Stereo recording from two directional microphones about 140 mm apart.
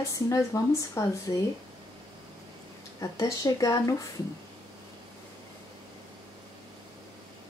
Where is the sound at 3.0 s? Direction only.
25° left (ahead or behind).